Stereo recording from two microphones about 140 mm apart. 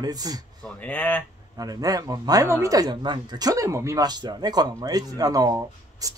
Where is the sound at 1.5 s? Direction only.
25° right (ahead or behind).